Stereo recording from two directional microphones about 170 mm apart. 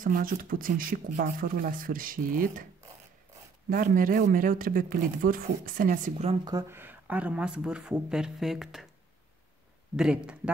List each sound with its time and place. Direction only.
0.0 s speech: 55° right (ahead or behind)
3.7 s speech: 55° right (ahead or behind)
6.4 s speech: 15° right (ahead or behind); by 8.8 s centre (ahead or behind)
9.9 s speech: 5° right (ahead or behind)